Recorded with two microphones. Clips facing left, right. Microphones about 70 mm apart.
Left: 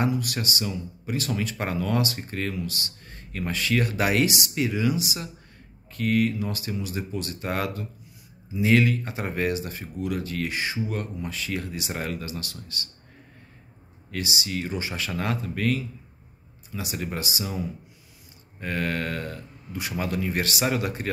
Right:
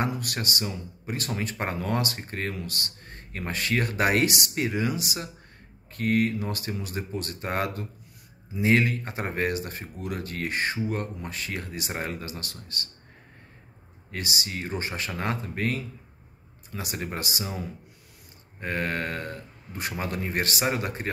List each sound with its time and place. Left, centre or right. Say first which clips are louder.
0.0 s a man's voice: left 3 dB; right
14.1 s a man's voice: left 3 dB; right